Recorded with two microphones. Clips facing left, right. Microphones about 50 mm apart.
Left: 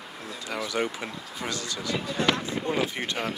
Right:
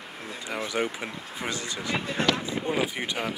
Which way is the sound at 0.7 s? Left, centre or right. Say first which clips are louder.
Even; centre.